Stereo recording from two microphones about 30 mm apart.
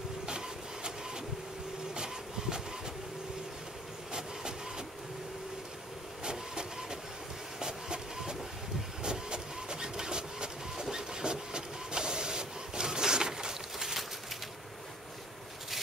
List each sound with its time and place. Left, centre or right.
0.3 s printer: right
4.1 s train: right
6.5 s train: right
7.5 s vehicle: right
9.0 s printer: right